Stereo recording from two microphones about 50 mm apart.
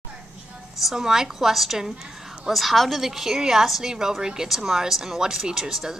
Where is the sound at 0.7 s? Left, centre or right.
Centre.